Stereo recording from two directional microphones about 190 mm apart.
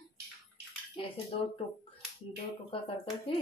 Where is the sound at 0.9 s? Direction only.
30° left (ahead or behind).